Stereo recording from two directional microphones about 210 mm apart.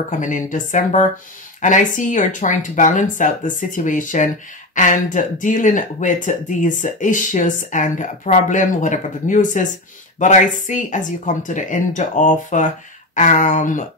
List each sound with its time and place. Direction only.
0.2 s speech: 35° left (ahead or behind)